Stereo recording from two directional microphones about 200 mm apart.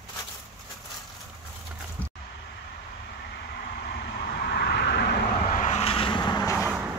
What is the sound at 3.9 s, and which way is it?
Vehicle, 55° left (ahead or behind).